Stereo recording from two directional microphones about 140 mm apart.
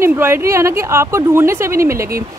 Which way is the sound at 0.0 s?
15° right (ahead or behind).